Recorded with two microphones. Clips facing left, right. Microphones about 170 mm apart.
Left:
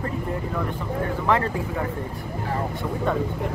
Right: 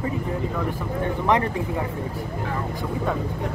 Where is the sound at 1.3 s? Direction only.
15° right (ahead or behind).